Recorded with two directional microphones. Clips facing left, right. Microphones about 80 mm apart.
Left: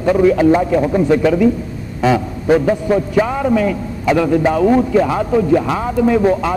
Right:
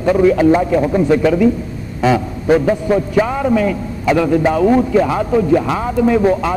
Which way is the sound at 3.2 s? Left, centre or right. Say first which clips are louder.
Even; centre.